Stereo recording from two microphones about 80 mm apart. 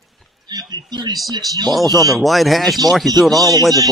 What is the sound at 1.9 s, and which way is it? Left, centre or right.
Speech, right.